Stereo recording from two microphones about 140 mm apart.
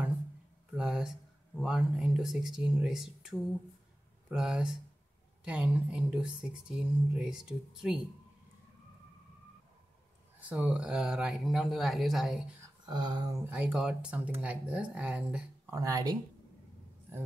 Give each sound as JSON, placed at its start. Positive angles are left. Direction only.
{"t": 0.7, "sound": "a sound", "side_deg": -5}
{"t": 1.6, "sound": "speech", "side_deg": -5}
{"t": 10.5, "sound": "speech", "side_deg": -5}
{"t": 12.8, "sound": "speech", "side_deg": -30}
{"t": 13.5, "sound": "speech", "side_deg": -5}
{"t": 15.7, "sound": "speech", "side_deg": -25}